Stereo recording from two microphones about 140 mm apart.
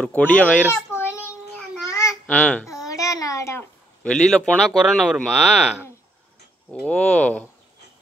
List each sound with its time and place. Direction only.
0.0 s a child's voice: 10° left (ahead or behind)
1.9 s babbling: 20° left (ahead or behind)
2.2 s speech: 10° left (ahead or behind)
2.9 s a child's voice: 25° left (ahead or behind)
4.0 s speech: 5° left (ahead or behind)
5.3 s speech: 5° right (ahead or behind)
6.7 s speech: 10° left (ahead or behind)